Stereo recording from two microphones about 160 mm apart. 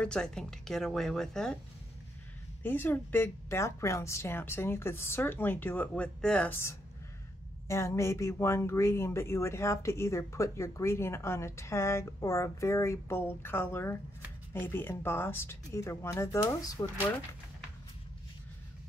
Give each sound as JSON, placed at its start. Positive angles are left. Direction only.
{"t": 0.0, "sound": "speech", "side_deg": 5}
{"t": 2.6, "sound": "speech", "side_deg": 15}